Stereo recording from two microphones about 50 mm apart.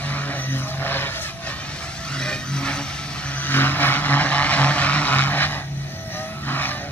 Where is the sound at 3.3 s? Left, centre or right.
Left.